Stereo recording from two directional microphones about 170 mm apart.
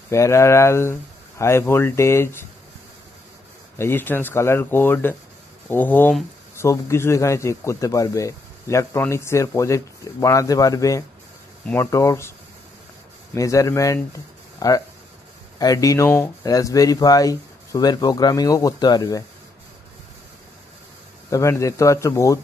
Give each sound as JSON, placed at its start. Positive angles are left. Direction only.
{"t": 0.1, "sound": "a man's voice", "side_deg": 15}
{"t": 3.7, "sound": "a man's voice", "side_deg": 15}
{"t": 21.3, "sound": "a man's voice", "side_deg": 20}